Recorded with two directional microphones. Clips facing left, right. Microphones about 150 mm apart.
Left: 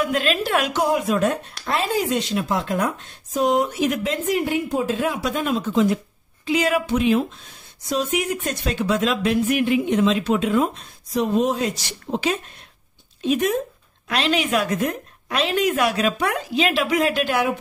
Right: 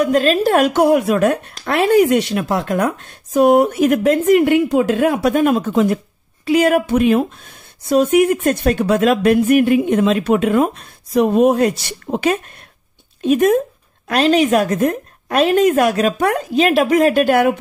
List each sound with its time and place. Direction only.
0.0 s a woman's voice: 40° right (ahead or behind)